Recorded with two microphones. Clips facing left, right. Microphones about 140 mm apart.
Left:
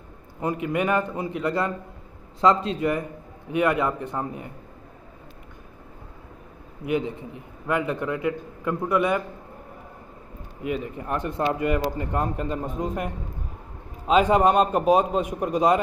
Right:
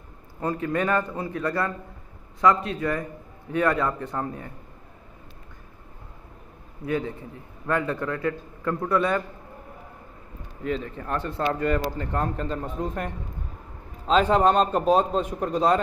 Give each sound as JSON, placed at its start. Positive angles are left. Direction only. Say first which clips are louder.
{"t": 0.4, "sound": "speech", "louder": "left 1 dB", "side_deg": 15}
{"t": 6.9, "sound": "speech", "louder": "left 2 dB", "side_deg": 15}
{"t": 10.6, "sound": "speech", "louder": "even", "side_deg": 10}